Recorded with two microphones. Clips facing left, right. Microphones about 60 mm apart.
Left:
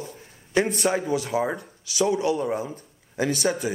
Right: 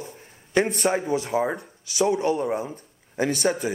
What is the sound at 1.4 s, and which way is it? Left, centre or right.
Speech, centre.